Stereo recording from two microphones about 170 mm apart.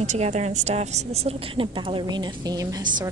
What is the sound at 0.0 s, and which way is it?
A woman's voice, 40° right (ahead or behind).